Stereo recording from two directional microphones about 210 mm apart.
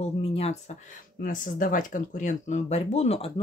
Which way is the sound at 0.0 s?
30° left (ahead or behind).